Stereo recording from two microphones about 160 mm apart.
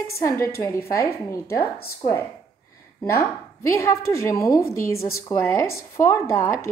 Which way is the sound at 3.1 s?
20° left (ahead or behind).